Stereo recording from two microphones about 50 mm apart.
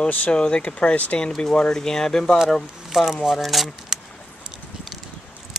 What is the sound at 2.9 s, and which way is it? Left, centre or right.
Speech, centre.